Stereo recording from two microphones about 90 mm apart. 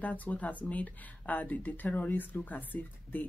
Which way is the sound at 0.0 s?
15° left (ahead or behind).